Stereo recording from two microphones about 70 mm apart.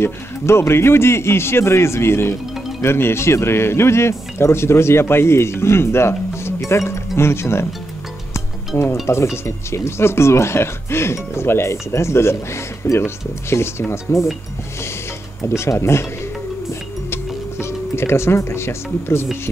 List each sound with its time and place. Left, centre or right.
0.0 s speech: left
8.3 s music: left
9.0 s speech: left
15.4 s speech: left
17.6 s speech: left